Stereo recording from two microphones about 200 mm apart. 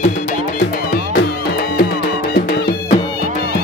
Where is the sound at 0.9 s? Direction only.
50° left (ahead or behind).